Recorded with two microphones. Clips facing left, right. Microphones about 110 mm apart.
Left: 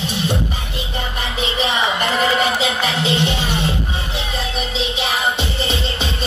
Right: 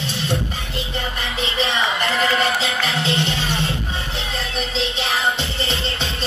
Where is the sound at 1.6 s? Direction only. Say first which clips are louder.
Left 2 dB; 15° left (ahead or behind).